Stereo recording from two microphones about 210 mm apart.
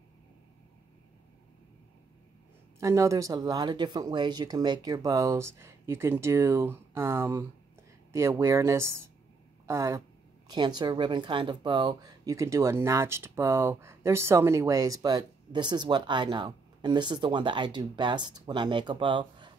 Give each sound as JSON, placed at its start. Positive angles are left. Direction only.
{"t": 2.8, "sound": "speech", "side_deg": -15}